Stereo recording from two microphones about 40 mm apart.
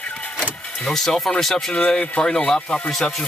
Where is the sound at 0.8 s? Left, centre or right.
Centre.